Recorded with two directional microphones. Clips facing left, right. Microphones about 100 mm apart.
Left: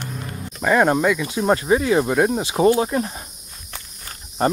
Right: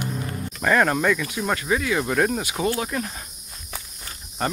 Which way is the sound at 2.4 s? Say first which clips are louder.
Left 8 dB; 30° left (ahead or behind).